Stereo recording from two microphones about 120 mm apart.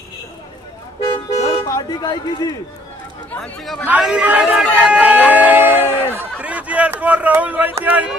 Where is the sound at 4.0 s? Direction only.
10° right (ahead or behind).